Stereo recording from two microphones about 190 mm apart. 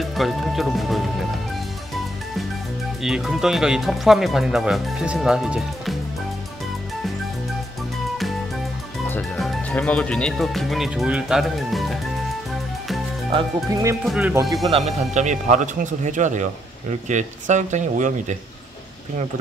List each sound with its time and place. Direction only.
0.0 s speech: centre (ahead or behind)
3.0 s speech: centre (ahead or behind)
9.1 s speech: 5° left (ahead or behind)
13.3 s speech: 20° right (ahead or behind)
14.0 s speech: 5° right (ahead or behind)
14.5 s speech: 20° right (ahead or behind)
14.8 s speech: 35° right (ahead or behind)